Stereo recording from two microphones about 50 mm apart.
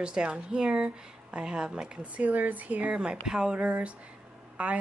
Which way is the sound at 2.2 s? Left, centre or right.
Right.